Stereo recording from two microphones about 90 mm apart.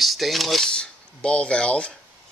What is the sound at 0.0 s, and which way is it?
Speech, centre (ahead or behind).